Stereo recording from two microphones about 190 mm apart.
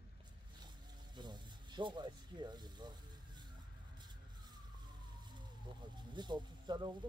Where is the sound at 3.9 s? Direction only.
20° right (ahead or behind).